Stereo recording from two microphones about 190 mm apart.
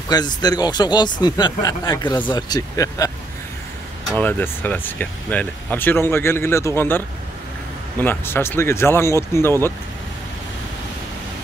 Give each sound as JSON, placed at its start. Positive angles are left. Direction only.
{"t": 0.1, "sound": "speech", "side_deg": 20}
{"t": 4.2, "sound": "speech", "side_deg": 10}
{"t": 8.0, "sound": "speech", "side_deg": 10}